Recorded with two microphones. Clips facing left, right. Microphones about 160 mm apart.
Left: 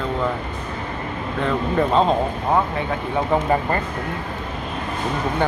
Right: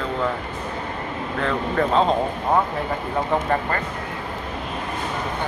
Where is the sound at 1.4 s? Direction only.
5° left (ahead or behind).